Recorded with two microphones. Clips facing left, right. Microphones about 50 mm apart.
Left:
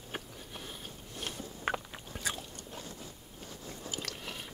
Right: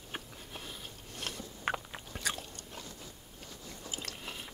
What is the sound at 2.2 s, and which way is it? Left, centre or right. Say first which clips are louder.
Biting: even; right.